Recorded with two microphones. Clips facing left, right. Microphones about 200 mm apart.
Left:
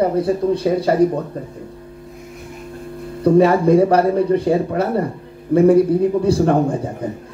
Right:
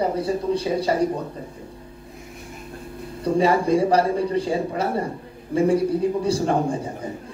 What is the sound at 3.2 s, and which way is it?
Music, 60° left (ahead or behind).